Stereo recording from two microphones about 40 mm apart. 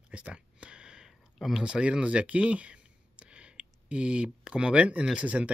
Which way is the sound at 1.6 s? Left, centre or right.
Right.